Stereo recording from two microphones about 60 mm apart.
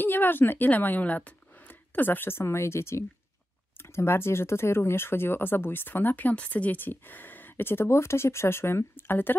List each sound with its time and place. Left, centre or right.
0.0 s speech: left